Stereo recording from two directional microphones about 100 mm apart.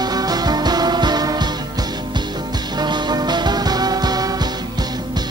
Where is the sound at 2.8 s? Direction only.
45° right (ahead or behind).